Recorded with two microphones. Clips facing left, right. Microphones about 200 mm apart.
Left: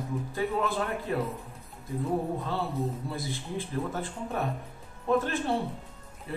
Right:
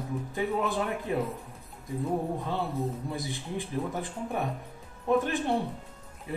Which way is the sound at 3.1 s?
15° right (ahead or behind).